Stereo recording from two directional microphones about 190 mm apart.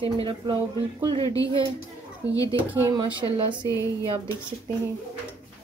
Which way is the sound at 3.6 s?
20° left (ahead or behind).